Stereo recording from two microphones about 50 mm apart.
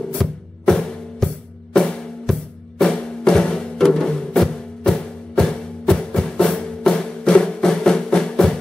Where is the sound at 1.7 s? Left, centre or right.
Centre.